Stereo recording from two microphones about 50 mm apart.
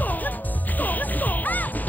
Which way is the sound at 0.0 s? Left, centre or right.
Left.